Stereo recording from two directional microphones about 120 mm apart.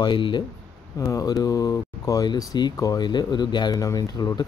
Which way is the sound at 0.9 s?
30° left (ahead or behind).